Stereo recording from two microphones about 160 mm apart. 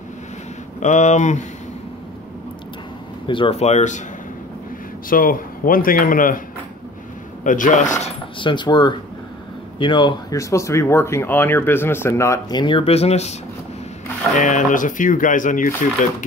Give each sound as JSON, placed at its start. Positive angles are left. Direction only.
{"t": 0.7, "sound": "speech", "side_deg": 50}
{"t": 3.3, "sound": "speech", "side_deg": 35}
{"t": 5.1, "sound": "speech", "side_deg": 60}
{"t": 7.4, "sound": "speech", "side_deg": 55}
{"t": 8.0, "sound": "speech", "side_deg": 30}
{"t": 14.4, "sound": "speech", "side_deg": 55}